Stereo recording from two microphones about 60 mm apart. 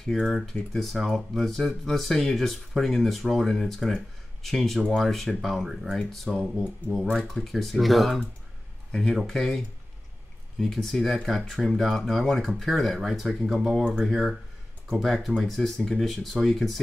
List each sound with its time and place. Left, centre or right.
0.0 s speech: centre
5.9 s speech: centre
10.6 s speech: centre